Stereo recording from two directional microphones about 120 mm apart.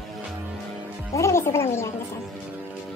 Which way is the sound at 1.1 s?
25° left (ahead or behind).